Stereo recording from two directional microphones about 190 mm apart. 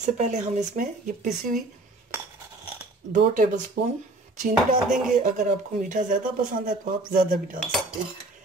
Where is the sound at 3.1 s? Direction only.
45° right (ahead or behind).